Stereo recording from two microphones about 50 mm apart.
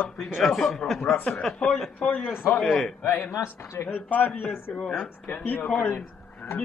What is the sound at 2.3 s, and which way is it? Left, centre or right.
A man's voice, left.